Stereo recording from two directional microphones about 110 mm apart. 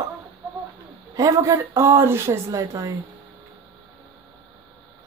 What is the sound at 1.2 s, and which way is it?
Speech, 30° right (ahead or behind).